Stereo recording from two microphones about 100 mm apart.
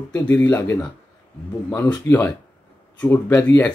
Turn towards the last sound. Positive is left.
turn(degrees=20)  # may be behind; listen again after turning